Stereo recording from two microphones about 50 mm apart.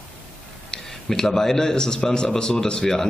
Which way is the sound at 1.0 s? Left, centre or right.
Centre.